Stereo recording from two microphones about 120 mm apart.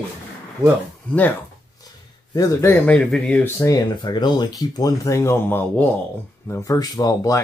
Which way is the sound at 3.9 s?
40° left (ahead or behind).